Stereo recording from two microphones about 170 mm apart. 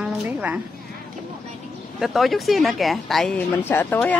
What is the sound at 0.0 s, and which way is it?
Sheep, 10° right (ahead or behind).